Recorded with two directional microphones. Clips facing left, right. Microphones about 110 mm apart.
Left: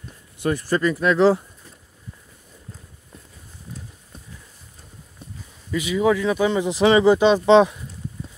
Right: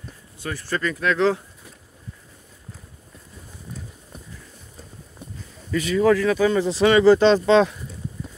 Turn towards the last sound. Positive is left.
turn(degrees=20)  # may be behind; listen again after turning